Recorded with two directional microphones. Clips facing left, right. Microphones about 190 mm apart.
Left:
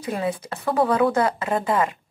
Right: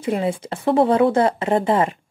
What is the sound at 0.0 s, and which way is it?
Speech, 25° right (ahead or behind).